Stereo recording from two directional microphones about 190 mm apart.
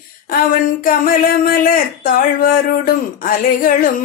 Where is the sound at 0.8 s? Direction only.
50° left (ahead or behind).